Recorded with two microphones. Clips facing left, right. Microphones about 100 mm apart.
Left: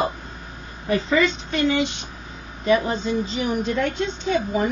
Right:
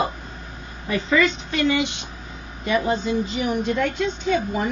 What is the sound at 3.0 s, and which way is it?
A woman's voice, 35° left (ahead or behind).